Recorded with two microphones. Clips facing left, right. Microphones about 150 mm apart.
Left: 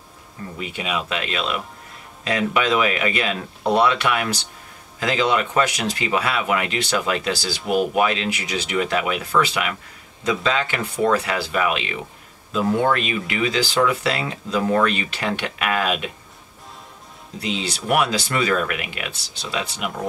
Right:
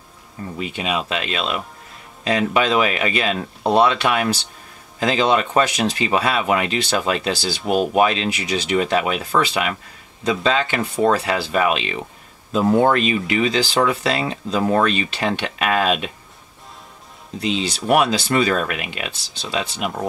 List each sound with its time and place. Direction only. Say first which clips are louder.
0.6 s speech: right 3 dB; 25° right (ahead or behind)
17.4 s speech: right 4 dB; 25° right (ahead or behind)